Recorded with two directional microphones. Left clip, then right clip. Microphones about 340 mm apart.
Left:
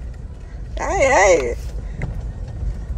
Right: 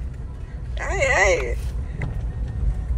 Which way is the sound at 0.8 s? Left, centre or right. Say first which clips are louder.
Left 5 dB; centre.